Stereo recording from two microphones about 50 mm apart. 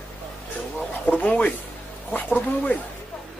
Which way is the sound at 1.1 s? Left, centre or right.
Left.